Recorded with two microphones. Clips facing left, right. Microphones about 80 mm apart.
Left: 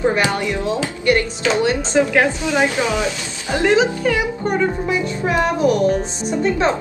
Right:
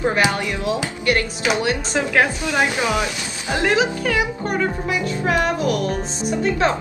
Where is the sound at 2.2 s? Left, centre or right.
Centre.